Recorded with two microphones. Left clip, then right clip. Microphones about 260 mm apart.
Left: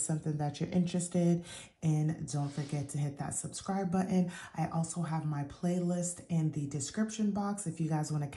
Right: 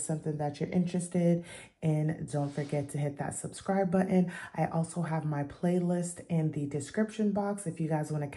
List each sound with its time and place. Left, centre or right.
0.1 s speech: left